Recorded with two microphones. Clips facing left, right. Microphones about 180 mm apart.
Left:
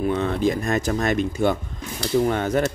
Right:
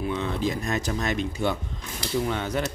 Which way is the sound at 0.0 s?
50° left (ahead or behind).